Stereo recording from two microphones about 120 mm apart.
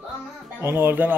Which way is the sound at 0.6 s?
20° right (ahead or behind).